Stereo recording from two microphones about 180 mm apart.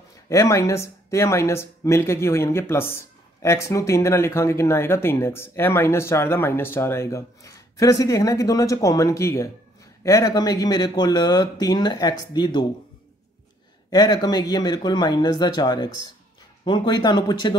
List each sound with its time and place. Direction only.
0.3 s speech: 15° left (ahead or behind)
13.8 s speech: 20° left (ahead or behind)